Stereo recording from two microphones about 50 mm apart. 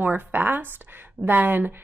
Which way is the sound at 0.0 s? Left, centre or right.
Right.